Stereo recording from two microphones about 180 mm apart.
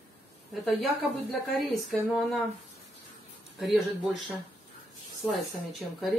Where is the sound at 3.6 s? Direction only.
Centre (ahead or behind).